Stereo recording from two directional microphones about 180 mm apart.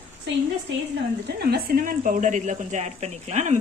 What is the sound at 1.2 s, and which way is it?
Speech, 60° right (ahead or behind).